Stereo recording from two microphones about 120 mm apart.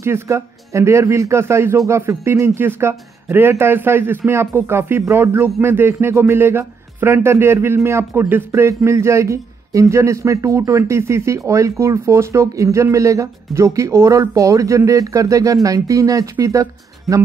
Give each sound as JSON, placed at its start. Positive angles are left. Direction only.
{"t": 0.0, "sound": "a man's voice", "side_deg": -25}